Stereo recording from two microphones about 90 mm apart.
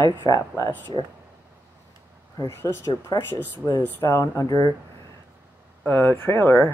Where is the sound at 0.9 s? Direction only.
80° right.